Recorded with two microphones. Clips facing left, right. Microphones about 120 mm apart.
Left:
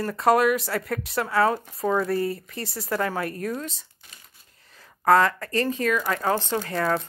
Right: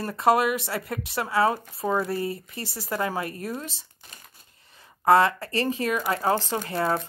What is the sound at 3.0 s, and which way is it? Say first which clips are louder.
Speech: even; 15° right (ahead or behind).